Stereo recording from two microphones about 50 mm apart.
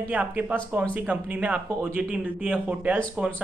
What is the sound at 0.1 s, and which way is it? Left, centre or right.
A man's voice, right.